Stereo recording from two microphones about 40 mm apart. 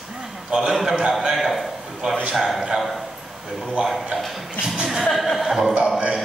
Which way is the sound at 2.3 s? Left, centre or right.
Centre.